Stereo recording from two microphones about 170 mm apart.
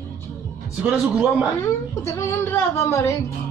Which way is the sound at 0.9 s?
5° right (ahead or behind).